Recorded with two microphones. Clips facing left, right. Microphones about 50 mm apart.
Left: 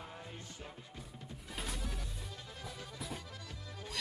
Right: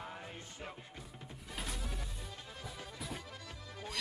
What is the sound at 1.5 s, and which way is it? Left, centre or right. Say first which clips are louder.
Music: even; centre.